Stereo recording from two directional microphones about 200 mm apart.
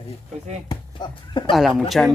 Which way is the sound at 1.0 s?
20° left (ahead or behind).